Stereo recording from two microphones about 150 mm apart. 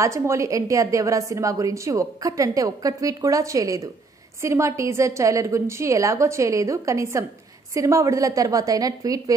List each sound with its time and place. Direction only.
0.0 s a woman's voice: 20° right (ahead or behind)